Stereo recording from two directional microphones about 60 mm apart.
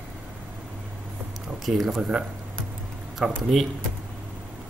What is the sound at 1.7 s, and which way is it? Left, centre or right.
Speech, centre.